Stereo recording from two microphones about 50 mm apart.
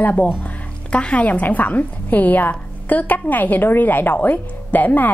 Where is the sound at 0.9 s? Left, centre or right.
Left.